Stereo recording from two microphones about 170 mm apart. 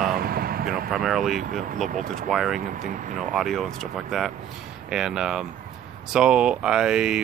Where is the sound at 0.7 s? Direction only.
Centre (ahead or behind).